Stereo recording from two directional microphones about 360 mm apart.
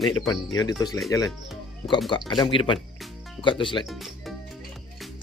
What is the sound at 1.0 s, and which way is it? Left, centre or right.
Speech, centre.